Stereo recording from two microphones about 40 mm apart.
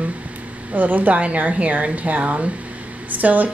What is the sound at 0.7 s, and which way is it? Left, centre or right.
A woman's voice, right.